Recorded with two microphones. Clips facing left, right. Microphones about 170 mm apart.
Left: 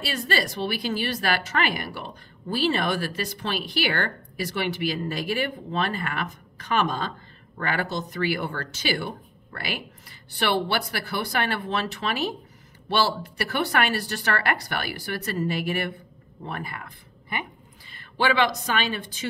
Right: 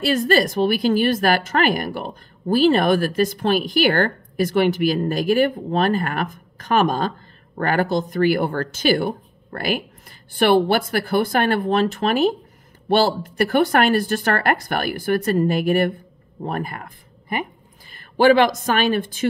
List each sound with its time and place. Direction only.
0.0 s a woman's voice: 50° right (ahead or behind)